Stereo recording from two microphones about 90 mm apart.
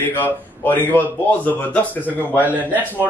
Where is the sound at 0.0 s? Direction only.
20° left (ahead or behind).